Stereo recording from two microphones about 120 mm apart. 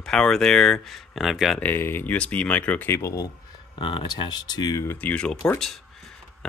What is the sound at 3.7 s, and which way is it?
Speech, 45° left (ahead or behind).